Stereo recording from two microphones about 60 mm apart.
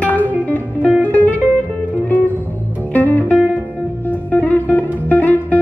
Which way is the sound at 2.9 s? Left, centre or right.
Left.